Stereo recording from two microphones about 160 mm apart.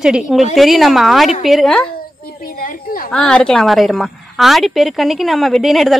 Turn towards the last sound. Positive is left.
turn(degrees=0)  # may be behind; listen again after turning